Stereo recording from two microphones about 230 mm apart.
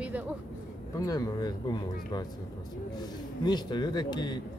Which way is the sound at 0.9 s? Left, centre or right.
Centre.